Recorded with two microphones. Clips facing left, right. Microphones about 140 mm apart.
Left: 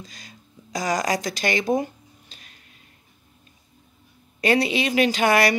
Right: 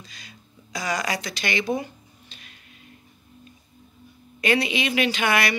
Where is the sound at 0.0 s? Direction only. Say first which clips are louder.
Left 3 dB; 40° left (ahead or behind).